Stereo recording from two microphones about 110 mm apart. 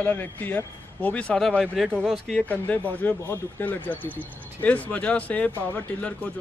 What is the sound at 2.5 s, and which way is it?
Speech, 15° left (ahead or behind).